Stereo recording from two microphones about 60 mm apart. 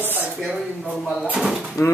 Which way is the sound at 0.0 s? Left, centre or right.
Right.